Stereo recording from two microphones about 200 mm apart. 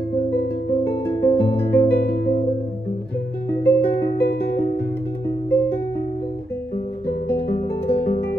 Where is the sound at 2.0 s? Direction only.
55° left (ahead or behind).